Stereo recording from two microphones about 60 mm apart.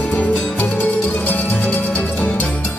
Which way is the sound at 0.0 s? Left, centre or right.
Left.